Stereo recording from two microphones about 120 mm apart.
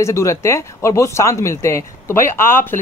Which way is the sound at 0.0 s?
25° left (ahead or behind).